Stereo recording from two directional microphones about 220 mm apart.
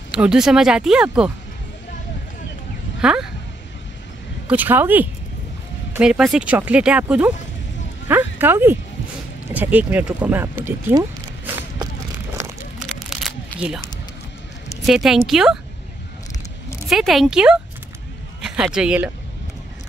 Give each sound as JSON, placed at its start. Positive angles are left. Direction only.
{"t": 0.1, "sound": "speech", "side_deg": -5}
{"t": 3.0, "sound": "speech", "side_deg": -5}
{"t": 4.5, "sound": "a woman's voice", "side_deg": -10}
{"t": 13.1, "sound": "shuffling cards", "side_deg": 0}
{"t": 14.9, "sound": "speech", "side_deg": 0}
{"t": 16.9, "sound": "a man's voice", "side_deg": 0}